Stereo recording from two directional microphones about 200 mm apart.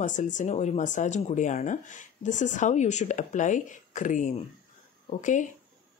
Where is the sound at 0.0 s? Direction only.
40° left (ahead or behind).